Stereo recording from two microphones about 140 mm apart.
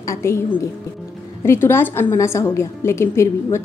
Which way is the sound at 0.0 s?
20° left (ahead or behind).